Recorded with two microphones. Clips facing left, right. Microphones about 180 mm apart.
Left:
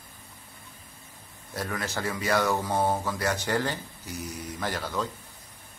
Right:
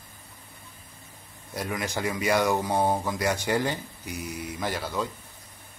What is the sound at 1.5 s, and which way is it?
Speech, 15° right (ahead or behind).